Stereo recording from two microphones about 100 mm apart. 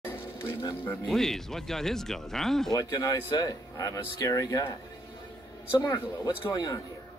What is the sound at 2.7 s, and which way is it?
Speech, 40° left (ahead or behind).